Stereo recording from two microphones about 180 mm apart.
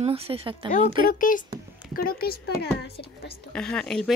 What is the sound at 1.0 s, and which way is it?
Speech, 50° left (ahead or behind).